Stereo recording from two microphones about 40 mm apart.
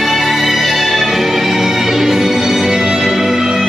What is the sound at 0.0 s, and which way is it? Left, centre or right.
Music, centre.